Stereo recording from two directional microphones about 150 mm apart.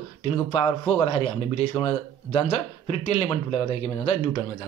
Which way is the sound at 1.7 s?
40° left (ahead or behind).